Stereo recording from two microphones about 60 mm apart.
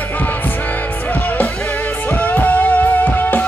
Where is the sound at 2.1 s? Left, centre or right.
Left.